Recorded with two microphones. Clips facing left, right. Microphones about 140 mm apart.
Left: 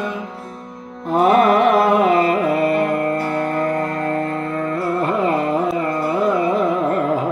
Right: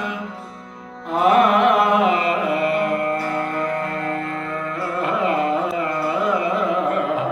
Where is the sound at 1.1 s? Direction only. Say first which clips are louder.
Left 2 dB; 40° left (ahead or behind).